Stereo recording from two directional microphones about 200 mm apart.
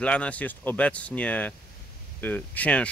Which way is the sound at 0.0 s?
5° left (ahead or behind).